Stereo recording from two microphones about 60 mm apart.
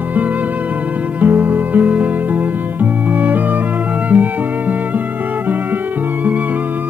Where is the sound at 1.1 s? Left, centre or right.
Right.